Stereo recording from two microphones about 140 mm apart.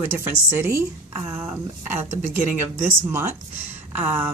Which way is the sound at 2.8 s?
15° right (ahead or behind).